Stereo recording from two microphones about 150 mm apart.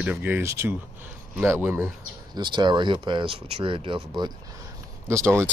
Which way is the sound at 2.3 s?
30° right (ahead or behind).